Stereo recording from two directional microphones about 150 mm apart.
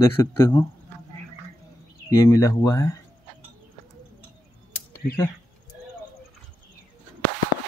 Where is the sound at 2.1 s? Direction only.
20° left (ahead or behind).